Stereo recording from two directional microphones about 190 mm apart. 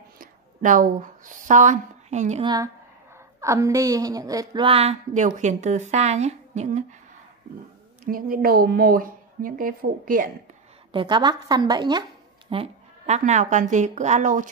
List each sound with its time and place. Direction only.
0.2 s a woman's voice: 45° right (ahead or behind)
2.4 s a woman's voice: 20° right (ahead or behind); by 6.8 s 35° right (ahead or behind)
8.0 s speech: 50° right (ahead or behind)
10.9 s a woman's voice: 25° right (ahead or behind)
12.4 s a woman's voice: 35° right (ahead or behind)